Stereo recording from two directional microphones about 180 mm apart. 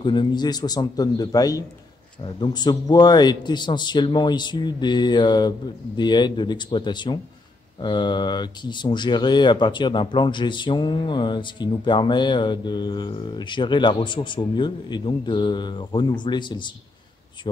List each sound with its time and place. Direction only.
0.0 s speech: 25° left (ahead or behind)